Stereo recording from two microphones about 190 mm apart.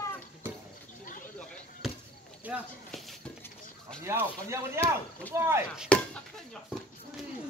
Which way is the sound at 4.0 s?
15° right (ahead or behind).